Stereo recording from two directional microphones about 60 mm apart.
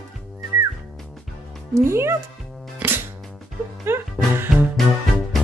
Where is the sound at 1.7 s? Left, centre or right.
Right.